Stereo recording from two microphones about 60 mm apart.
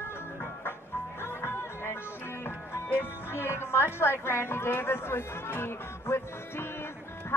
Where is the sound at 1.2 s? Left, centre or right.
Left.